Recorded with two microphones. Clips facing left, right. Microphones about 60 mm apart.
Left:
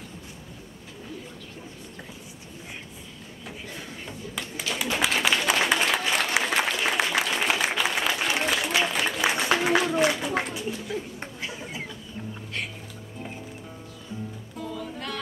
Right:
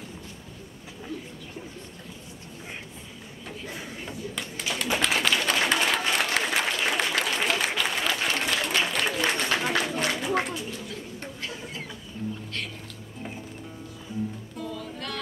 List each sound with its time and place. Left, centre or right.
3.7 s a sound: centre
5.2 s applause: centre
11.4 s vehicle: centre
12.2 s music: left
14.6 s music: centre